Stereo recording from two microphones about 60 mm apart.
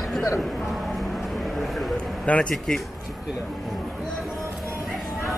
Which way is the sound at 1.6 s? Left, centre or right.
Centre.